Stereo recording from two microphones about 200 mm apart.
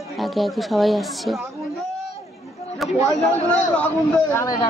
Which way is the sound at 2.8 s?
Centre (ahead or behind).